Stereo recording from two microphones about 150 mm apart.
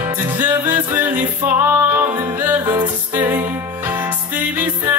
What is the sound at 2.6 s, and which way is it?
Music, 30° right (ahead or behind).